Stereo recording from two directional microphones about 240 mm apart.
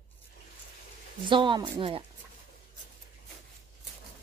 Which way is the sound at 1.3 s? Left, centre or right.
Centre.